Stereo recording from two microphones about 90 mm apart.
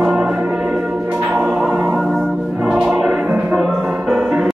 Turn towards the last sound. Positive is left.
turn(degrees=0)  # may be behind; listen again after turning